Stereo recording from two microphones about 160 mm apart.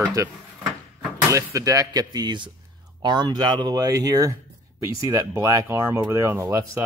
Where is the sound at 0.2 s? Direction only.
20° right (ahead or behind).